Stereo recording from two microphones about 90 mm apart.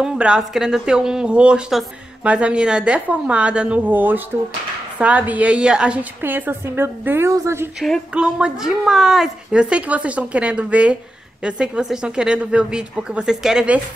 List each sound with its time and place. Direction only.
0.0 s a woman's voice: 10° right (ahead or behind)
6.2 s a woman's voice: 20° right (ahead or behind)
8.1 s a woman's voice: 10° right (ahead or behind)